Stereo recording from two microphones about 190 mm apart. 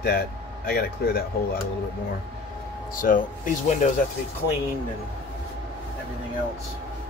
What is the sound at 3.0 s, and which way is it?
Speech, 45° left (ahead or behind).